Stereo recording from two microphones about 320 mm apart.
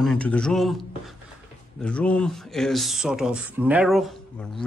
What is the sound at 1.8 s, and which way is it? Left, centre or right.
Speech, centre.